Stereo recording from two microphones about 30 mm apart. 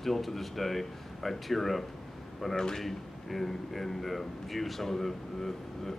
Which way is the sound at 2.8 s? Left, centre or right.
Centre.